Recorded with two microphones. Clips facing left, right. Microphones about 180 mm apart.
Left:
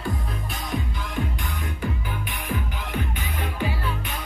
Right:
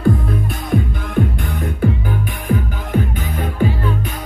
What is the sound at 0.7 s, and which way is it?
Music, 55° right (ahead or behind).